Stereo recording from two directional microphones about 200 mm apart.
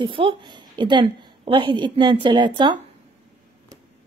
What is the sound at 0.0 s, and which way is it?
A woman's voice, 25° right (ahead or behind).